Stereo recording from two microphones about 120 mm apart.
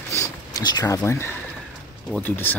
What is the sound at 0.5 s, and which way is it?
Speech, 35° left (ahead or behind).